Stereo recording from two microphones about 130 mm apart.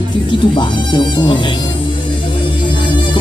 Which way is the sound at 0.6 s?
35° left (ahead or behind).